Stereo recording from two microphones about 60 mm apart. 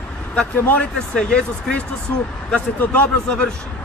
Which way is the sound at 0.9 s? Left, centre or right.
Centre.